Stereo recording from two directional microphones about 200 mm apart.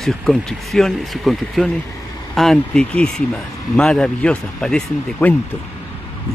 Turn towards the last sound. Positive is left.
turn(degrees=5)  # may be behind; listen again after turning